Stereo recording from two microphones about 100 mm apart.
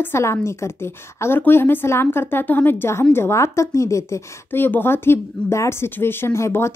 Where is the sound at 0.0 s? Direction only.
25° left (ahead or behind).